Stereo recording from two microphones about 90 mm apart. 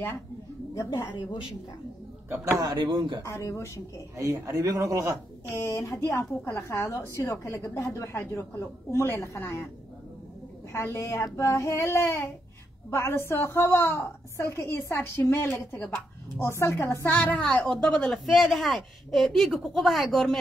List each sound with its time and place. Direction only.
0.8 s a woman's voice: 55° left (ahead or behind)
2.7 s speech: 60° right (ahead or behind)
3.3 s speech: 35° left (ahead or behind)
4.2 s a man's voice: 35° right (ahead or behind)
5.6 s speech: 35° left (ahead or behind)
10.7 s a woman's voice: 30° left (ahead or behind)
15.7 s speech: 15° left (ahead or behind)
16.3 s a woman's voice: 30° left (ahead or behind)
17.9 s a man's voice: 5° left (ahead or behind)